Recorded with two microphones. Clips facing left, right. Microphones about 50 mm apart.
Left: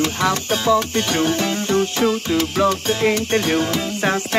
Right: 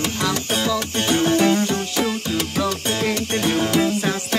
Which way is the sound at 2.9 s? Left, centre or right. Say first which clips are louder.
Left 4 dB; centre.